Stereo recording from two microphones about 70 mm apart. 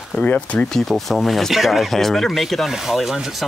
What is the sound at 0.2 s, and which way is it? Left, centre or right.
Speech, centre.